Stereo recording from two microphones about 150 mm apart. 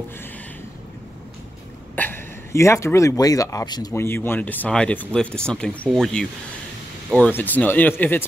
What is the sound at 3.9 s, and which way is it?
Speech, 15° left (ahead or behind).